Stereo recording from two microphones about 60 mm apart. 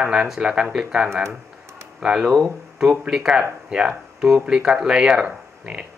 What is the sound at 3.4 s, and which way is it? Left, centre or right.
Speech, centre.